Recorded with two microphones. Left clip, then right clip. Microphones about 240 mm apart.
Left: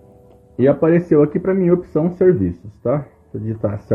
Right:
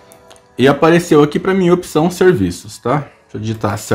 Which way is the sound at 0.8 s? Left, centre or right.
Right.